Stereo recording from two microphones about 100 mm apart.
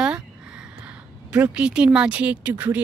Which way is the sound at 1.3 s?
15° right (ahead or behind).